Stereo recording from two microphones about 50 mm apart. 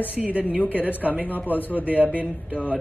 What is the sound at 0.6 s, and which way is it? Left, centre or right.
Speech, left.